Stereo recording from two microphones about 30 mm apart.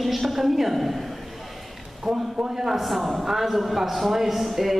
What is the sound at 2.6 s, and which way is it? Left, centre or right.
A man's voice, centre.